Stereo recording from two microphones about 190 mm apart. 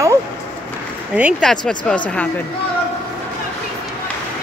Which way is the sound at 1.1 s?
5° right (ahead or behind).